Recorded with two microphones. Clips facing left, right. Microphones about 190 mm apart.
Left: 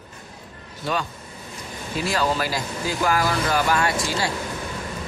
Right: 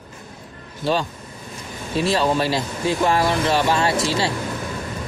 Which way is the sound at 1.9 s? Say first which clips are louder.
Right 4 dB; 25° right (ahead or behind).